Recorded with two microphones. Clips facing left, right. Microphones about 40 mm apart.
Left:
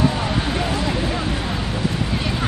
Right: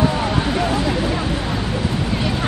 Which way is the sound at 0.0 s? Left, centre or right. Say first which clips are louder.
Right 2 dB; centre.